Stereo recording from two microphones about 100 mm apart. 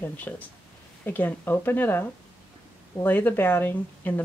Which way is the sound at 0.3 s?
15° left (ahead or behind).